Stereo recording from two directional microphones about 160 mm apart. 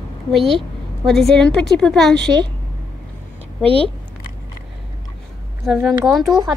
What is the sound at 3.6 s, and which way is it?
Speech, 35° right (ahead or behind).